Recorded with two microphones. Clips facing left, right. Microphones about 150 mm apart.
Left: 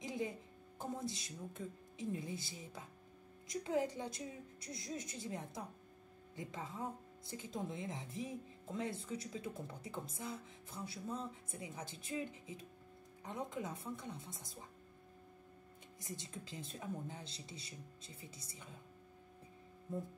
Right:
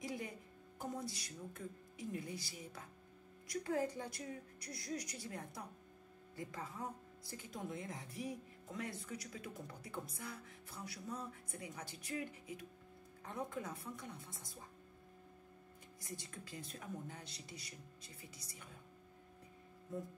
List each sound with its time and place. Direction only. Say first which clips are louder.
0.0 s music: left 3 dB; 20° left (ahead or behind)
3.4 s speech: left 1 dB; 20° left (ahead or behind)
16.0 s speech: left 2 dB; 20° left (ahead or behind)